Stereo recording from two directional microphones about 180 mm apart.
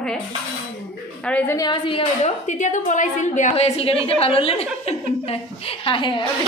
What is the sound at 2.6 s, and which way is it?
A woman's voice, 45° left (ahead or behind).